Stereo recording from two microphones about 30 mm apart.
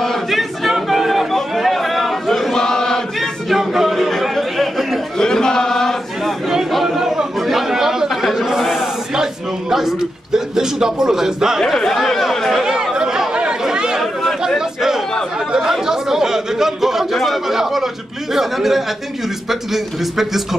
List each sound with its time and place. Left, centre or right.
0.3 s a sound: centre
1.5 s chatter: centre
2.5 s chant: left
3.2 s chatter: centre
5.1 s chant: left
6.7 s chatter: centre
7.6 s chatter: centre
8.1 s chatter: centre
8.5 s chant: centre
10.3 s a man's voice: centre
11.7 s speech: centre
12.9 s chatter: right
15.9 s a sound: centre
17.2 s a man's voice: centre